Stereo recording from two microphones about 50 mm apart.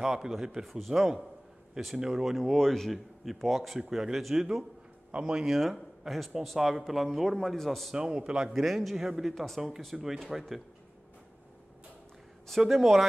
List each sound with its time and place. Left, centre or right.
0.0 s speech: centre
5.1 s speech: centre
5.4 s speech: centre
7.9 s a man's voice: centre
8.5 s speech: centre
9.3 s speech: centre
9.9 s speech: centre
12.4 s speech: centre